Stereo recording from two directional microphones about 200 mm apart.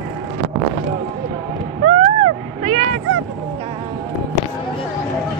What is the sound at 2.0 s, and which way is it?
Vehicle, 30° right (ahead or behind).